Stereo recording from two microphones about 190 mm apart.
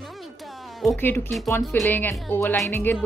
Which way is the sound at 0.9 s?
10° left (ahead or behind).